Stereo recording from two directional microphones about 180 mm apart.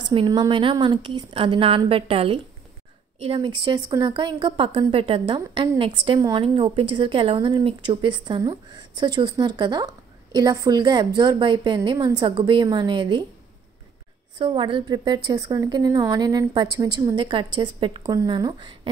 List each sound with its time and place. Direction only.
0.1 s a woman's voice: 25° right (ahead or behind)
14.4 s a woman's voice: 30° right (ahead or behind)